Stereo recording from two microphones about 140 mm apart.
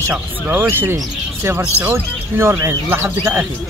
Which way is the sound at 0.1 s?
10° right (ahead or behind).